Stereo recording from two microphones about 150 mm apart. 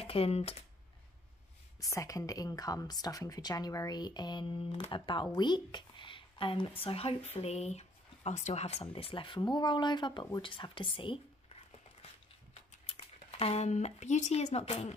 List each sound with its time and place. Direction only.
0.0 s speech: 40° left (ahead or behind)
1.8 s a woman's voice: 20° left (ahead or behind)
12.8 s speech: 40° left (ahead or behind)